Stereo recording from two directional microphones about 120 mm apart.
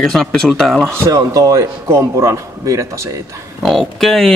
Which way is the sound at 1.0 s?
30° right (ahead or behind).